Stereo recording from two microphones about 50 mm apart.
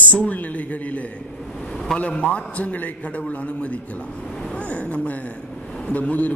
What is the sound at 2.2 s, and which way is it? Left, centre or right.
A man's voice, left.